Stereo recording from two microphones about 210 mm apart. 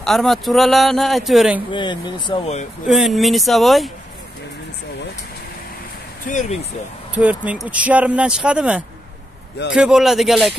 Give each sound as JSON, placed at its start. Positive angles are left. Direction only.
{"t": 0.0, "sound": "speech", "side_deg": 0}
{"t": 1.7, "sound": "speech", "side_deg": 20}
{"t": 2.9, "sound": "speech", "side_deg": 0}
{"t": 6.2, "sound": "speech", "side_deg": 35}
{"t": 7.2, "sound": "speech", "side_deg": -5}